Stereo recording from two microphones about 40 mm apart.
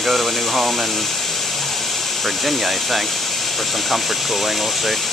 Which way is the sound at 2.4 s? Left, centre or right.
Centre.